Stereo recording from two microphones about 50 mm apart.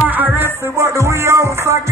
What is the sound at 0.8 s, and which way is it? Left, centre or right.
Music, right.